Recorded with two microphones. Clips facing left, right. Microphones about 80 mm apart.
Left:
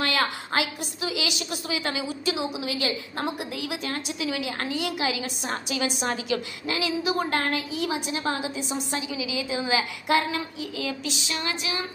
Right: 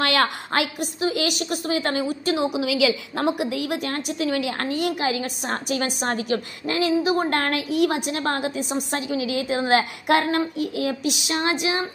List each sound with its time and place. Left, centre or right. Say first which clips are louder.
0.0 s a woman's voice: right 4 dB; right
7.2 s a woman's voice: right 3 dB; right
11.3 s a woman's voice: right 8 dB; right